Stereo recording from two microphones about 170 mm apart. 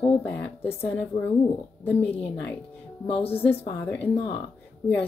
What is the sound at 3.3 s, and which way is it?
Speech, 10° left (ahead or behind).